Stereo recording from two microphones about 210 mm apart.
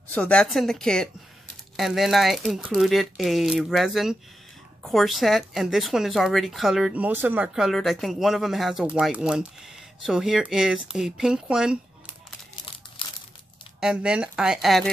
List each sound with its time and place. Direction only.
0.1 s speech: 5° left (ahead or behind)
13.0 s crumpling: 25° left (ahead or behind)
13.7 s speech: 5° right (ahead or behind)